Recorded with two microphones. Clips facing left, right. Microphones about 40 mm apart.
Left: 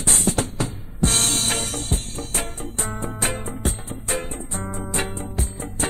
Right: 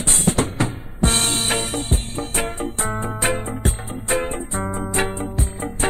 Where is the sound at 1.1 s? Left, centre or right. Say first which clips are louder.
Right 2 dB; right.